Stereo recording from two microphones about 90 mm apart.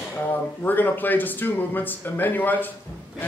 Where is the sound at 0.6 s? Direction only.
20° left (ahead or behind).